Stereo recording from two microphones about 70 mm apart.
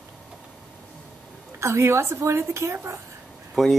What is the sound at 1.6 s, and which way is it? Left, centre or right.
A woman's voice, right.